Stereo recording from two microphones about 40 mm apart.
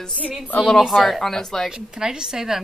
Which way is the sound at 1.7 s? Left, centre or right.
Centre.